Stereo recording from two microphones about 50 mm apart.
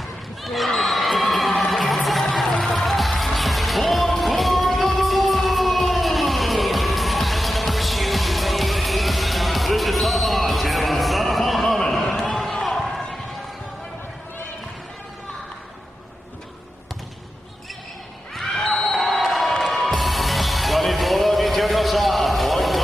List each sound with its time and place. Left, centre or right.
0.4 s a sound: centre
0.7 s crowd: centre
1.7 s music: centre
11.8 s a sound: centre
12.6 s basketball bounce: centre
18.3 s basketball bounce: centre
18.9 s music: centre